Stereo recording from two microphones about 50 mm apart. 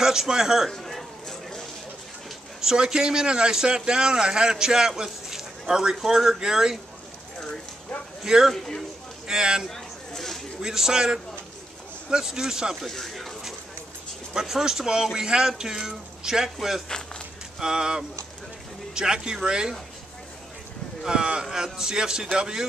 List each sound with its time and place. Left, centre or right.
0.0 s a man's voice: centre
0.7 s a sound: centre
2.6 s a man's voice: centre
8.2 s a man's voice: centre
8.5 s speech: centre
9.3 s a man's voice: centre
9.7 s a sound: centre
10.6 s a man's voice: centre
12.8 s speech: centre
14.3 s a man's voice: centre
16.9 s speech: centre
17.6 s a man's voice: centre
21.0 s a man's voice: centre